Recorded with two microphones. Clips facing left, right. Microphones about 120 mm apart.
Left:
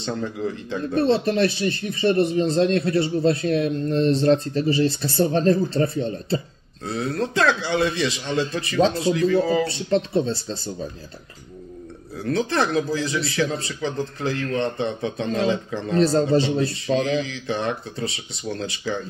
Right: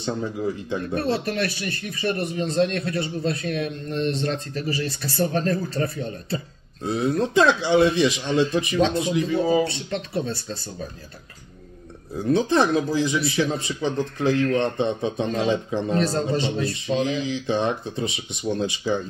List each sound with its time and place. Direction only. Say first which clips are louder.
0.0 s a man's voice: even; 15° right (ahead or behind)
0.9 s speech: left 6 dB; 25° left (ahead or behind)
6.8 s a man's voice: right 3 dB; 15° right (ahead or behind)
9.7 s speech: left 7 dB; 35° left (ahead or behind)
12.2 s a man's voice: right 3 dB; 15° right (ahead or behind)
16.0 s a man's voice: left 9 dB; 30° left (ahead or behind)
17.0 s a man's voice: even; 20° right (ahead or behind)